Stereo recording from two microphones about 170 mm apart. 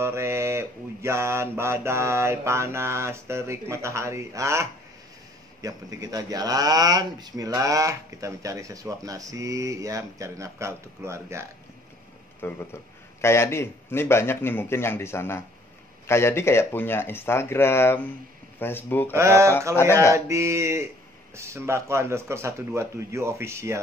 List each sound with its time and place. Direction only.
0.0 s mantra: 15° right (ahead or behind)
5.6 s speech: 20° right (ahead or behind)
12.4 s a man's voice: 15° left (ahead or behind)
19.1 s mantra: 15° right (ahead or behind)
19.7 s a man's voice: 15° left (ahead or behind)
20.2 s mantra: 15° right (ahead or behind)